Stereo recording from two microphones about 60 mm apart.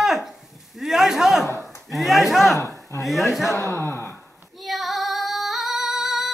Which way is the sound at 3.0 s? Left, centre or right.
Centre.